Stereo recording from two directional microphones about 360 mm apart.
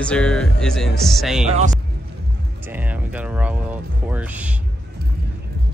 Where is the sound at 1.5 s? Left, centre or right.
Centre.